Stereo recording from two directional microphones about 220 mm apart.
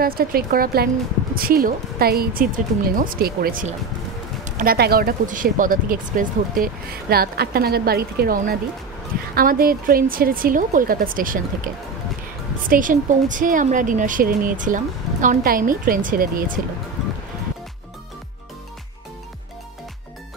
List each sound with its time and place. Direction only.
0.0 s speech: 40° right (ahead or behind)